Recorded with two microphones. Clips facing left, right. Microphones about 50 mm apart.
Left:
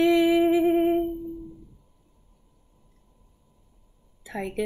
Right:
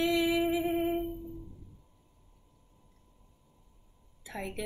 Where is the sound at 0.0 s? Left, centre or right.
Left.